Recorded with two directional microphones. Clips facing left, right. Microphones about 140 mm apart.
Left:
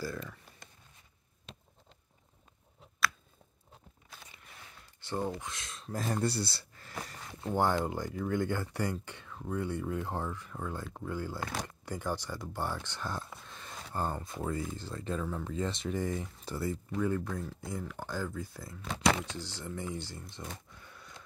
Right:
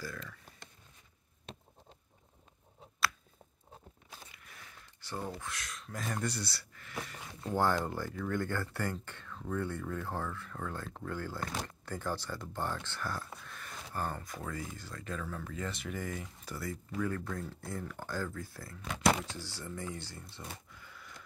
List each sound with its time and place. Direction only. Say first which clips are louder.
0.0 s speech: left 5 dB; 30° left (ahead or behind)
5.0 s speech: left 5 dB; 20° left (ahead or behind)
7.5 s speech: left 1 dB; 15° left (ahead or behind)